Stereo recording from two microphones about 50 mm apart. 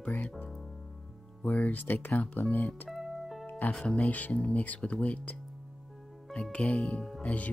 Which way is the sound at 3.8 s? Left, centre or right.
Left.